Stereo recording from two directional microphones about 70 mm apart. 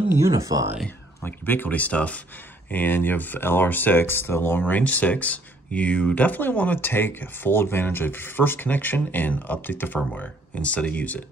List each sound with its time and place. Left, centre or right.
0.1 s speech: right
0.8 s speech: left